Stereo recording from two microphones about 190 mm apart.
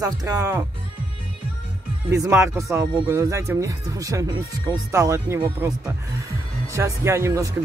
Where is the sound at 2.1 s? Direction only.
15° right (ahead or behind).